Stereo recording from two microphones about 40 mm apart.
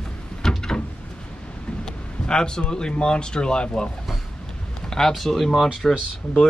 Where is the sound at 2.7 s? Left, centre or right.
Left.